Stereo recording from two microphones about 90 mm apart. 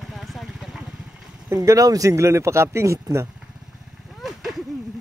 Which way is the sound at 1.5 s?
40° right (ahead or behind).